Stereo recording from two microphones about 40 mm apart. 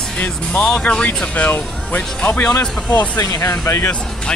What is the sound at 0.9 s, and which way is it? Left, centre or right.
Speech, left.